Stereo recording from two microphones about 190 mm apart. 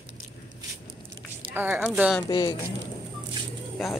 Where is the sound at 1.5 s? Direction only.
10° right (ahead or behind).